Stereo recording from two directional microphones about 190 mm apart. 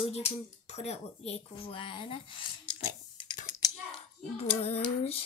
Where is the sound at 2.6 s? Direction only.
25° left (ahead or behind).